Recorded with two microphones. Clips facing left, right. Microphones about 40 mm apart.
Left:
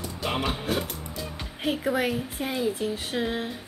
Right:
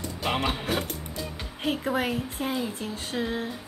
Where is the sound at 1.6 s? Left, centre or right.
Centre.